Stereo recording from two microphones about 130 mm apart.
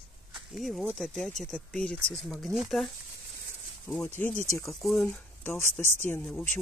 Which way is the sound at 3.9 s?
15° left (ahead or behind).